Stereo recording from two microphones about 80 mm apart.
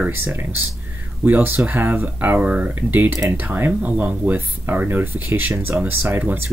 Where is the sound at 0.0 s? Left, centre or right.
Right.